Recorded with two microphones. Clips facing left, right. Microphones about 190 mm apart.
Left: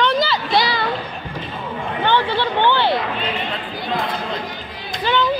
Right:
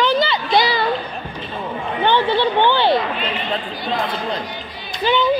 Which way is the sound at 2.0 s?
15° right (ahead or behind).